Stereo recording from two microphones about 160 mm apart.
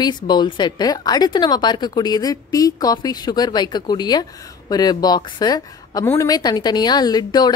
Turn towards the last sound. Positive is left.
turn(degrees=25)  # may be behind; listen again after turning